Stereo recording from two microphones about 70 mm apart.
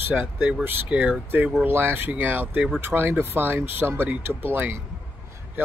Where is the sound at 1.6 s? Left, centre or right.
Right.